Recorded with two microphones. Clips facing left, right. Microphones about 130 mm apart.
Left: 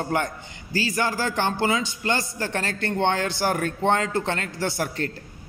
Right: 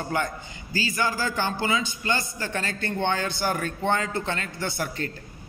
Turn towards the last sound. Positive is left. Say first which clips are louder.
# left 3 dB
turn(degrees=70)  # may be behind; listen again after turning